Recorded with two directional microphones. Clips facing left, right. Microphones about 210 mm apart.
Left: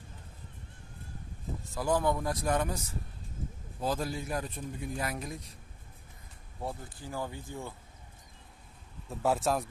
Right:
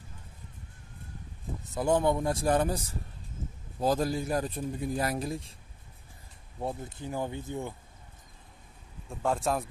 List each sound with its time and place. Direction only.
1.8 s speech: 25° right (ahead or behind)
3.8 s speech: 40° right (ahead or behind)
6.6 s speech: 20° right (ahead or behind)
9.1 s speech: 5° left (ahead or behind)